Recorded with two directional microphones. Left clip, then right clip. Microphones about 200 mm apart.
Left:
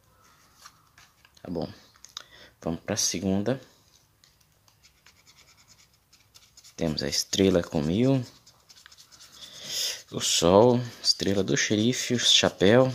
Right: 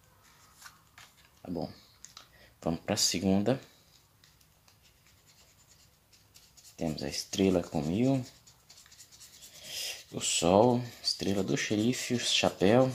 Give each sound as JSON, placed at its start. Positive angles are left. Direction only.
{"t": 1.4, "sound": "speech", "side_deg": 35}
{"t": 2.6, "sound": "speech", "side_deg": 15}
{"t": 6.8, "sound": "speech", "side_deg": 35}
{"t": 9.7, "sound": "speech", "side_deg": 35}